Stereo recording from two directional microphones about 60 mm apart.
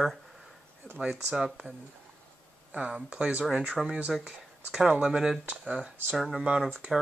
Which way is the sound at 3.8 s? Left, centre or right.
Centre.